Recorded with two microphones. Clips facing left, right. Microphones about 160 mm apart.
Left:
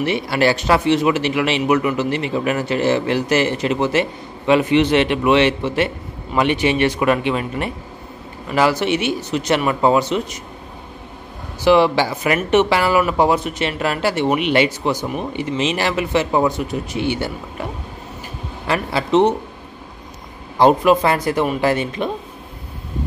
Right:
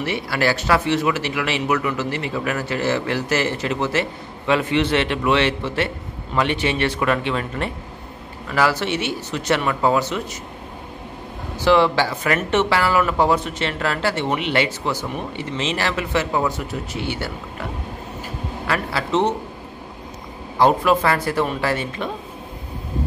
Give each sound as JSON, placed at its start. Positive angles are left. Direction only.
{"t": 0.0, "sound": "a man's voice", "side_deg": 20}
{"t": 11.6, "sound": "speech", "side_deg": 15}
{"t": 18.7, "sound": "a man's voice", "side_deg": 20}
{"t": 20.5, "sound": "speech", "side_deg": 20}